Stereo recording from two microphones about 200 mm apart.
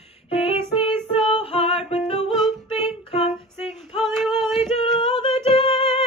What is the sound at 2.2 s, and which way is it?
Music, centre (ahead or behind).